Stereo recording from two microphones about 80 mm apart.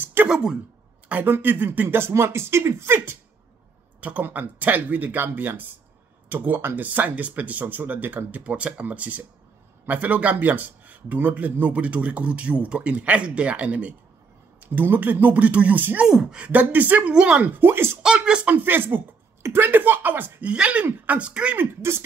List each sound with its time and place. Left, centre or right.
0.0 s a sound: right
0.3 s a man's voice: centre
1.0 s a man's voice: right
17.4 s speech: right
18.0 s speech: centre